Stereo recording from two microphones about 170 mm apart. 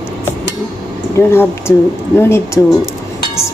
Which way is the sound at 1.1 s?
15° left (ahead or behind).